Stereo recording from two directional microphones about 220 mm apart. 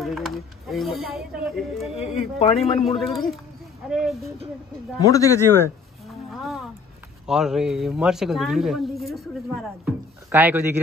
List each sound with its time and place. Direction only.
0.0 s speech: centre (ahead or behind)
2.0 s speech: 25° left (ahead or behind)
3.0 s speech: centre (ahead or behind)
5.0 s speech: 15° left (ahead or behind)
6.3 s music: centre (ahead or behind)
7.2 s speech: centre (ahead or behind)